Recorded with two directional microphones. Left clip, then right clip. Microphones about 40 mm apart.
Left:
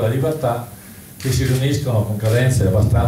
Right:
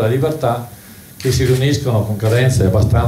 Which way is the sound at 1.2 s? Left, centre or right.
Centre.